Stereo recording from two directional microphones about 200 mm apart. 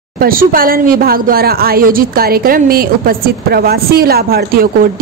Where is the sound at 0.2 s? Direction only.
45° right (ahead or behind).